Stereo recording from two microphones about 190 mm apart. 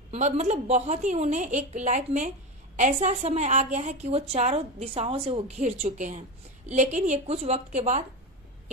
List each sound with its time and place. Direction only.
0.1 s a woman's voice: 40° right (ahead or behind)